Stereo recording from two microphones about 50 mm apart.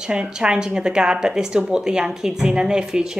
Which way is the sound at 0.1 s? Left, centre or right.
Centre.